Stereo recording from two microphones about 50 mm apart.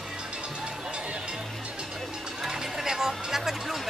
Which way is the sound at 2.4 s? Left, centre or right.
Centre.